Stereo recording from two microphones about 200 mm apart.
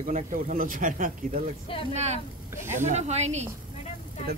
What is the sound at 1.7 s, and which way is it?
Speech, 25° left (ahead or behind).